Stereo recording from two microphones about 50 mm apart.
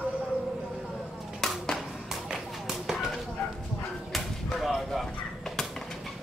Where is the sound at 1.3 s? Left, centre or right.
Centre.